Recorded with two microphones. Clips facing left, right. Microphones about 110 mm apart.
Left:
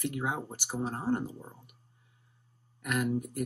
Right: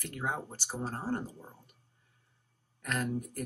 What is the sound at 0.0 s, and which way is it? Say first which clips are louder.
Speech: left 3 dB; 15° left (ahead or behind).